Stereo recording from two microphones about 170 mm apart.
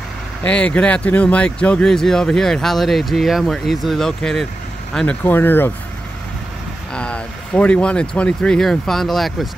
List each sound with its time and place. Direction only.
0.4 s speech: 5° left (ahead or behind)
6.9 s speech: 5° left (ahead or behind)